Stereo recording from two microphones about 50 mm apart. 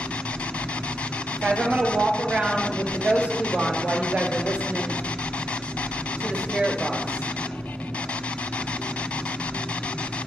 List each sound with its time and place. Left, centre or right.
1.4 s rub: centre
1.8 s speech: centre
2.4 s rub: left
6.5 s rub: left